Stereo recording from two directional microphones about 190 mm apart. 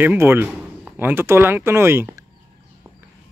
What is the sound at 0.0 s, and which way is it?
Speech, 10° right (ahead or behind).